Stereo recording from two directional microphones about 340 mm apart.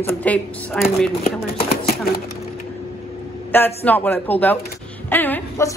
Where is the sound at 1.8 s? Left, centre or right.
Left.